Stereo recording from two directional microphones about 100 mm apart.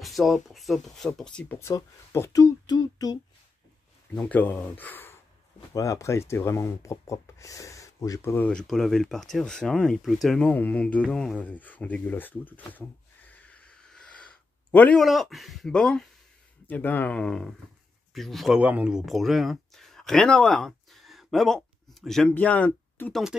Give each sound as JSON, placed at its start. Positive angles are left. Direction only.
{"t": 0.0, "sound": "speech", "side_deg": 0}
{"t": 1.6, "sound": "speech", "side_deg": 25}
{"t": 4.1, "sound": "speech", "side_deg": 15}
{"t": 5.7, "sound": "speech", "side_deg": 30}
{"t": 8.5, "sound": "speech", "side_deg": 5}
{"t": 15.0, "sound": "speech", "side_deg": 0}
{"t": 17.2, "sound": "speech", "side_deg": 5}
{"t": 18.6, "sound": "speech", "side_deg": -15}
{"t": 22.3, "sound": "speech", "side_deg": 15}